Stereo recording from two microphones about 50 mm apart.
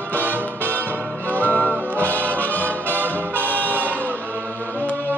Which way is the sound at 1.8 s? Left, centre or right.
Left.